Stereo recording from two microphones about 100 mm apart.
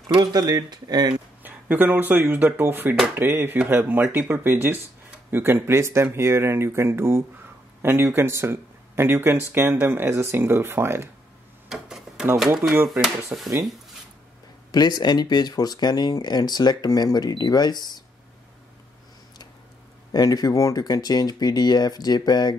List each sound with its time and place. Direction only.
0.1 s speech: 45° right (ahead or behind)
1.4 s speech: 15° right (ahead or behind)
11.7 s tick-tock: 5° right (ahead or behind)
12.9 s speech: 5° right (ahead or behind)
14.7 s speech: 45° left (ahead or behind)
20.1 s speech: 40° left (ahead or behind)